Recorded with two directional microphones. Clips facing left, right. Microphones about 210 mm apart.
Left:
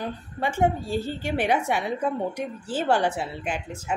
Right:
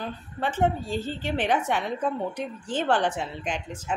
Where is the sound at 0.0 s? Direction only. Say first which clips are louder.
Left 2 dB; 10° left (ahead or behind).